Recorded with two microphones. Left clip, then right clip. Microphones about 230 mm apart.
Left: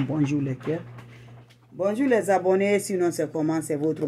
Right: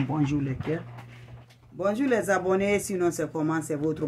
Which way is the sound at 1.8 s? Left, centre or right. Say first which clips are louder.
Left 3 dB; centre.